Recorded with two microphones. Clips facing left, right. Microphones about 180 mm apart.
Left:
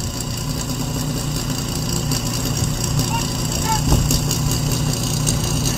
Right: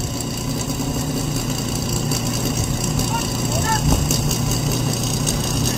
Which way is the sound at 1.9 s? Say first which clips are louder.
Right 1 dB; 5° right (ahead or behind).